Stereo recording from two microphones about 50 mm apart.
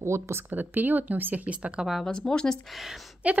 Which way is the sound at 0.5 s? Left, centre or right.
Right.